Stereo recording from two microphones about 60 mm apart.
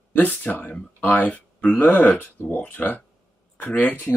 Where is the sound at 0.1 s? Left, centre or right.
Left.